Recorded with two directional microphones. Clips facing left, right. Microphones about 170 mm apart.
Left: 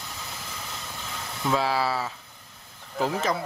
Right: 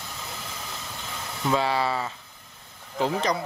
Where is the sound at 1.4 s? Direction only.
Centre (ahead or behind).